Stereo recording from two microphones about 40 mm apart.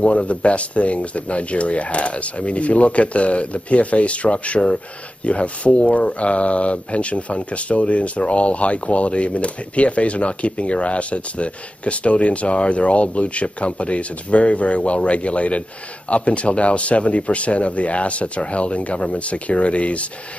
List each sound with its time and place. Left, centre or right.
0.0 s speech: left